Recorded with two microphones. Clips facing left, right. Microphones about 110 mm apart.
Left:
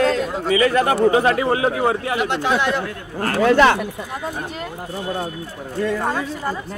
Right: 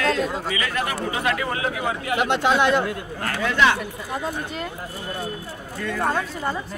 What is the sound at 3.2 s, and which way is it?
Speech, 40° left (ahead or behind).